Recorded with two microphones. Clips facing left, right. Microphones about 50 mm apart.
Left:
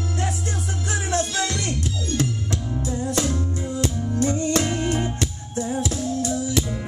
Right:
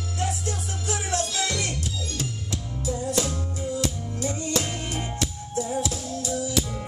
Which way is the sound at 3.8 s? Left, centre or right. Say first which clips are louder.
Left 6 dB; left.